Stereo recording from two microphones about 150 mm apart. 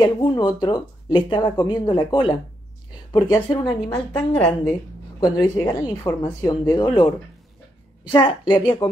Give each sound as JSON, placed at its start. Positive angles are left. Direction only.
{"t": 0.0, "sound": "a woman's voice", "side_deg": 30}
{"t": 5.2, "sound": "a woman's voice", "side_deg": 20}
{"t": 8.1, "sound": "a woman's voice", "side_deg": 30}